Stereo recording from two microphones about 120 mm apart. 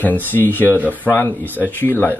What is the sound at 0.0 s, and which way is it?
Speech, 15° left (ahead or behind).